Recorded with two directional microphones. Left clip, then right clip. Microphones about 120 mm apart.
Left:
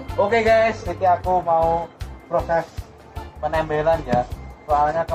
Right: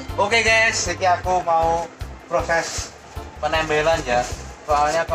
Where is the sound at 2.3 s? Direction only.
35° right (ahead or behind).